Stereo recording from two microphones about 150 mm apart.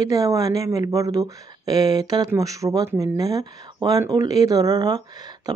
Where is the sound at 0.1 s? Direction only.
25° right (ahead or behind).